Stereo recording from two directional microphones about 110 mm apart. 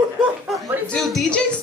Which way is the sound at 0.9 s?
Centre (ahead or behind).